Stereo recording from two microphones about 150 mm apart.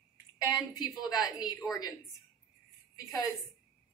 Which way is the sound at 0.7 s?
25° left (ahead or behind).